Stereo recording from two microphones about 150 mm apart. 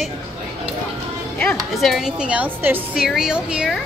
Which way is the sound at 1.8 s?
Centre (ahead or behind).